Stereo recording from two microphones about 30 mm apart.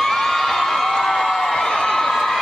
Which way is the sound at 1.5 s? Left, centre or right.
Left.